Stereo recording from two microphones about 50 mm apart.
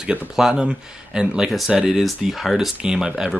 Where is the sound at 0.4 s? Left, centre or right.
Centre.